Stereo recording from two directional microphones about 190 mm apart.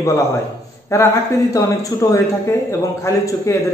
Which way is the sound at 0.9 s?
15° left (ahead or behind).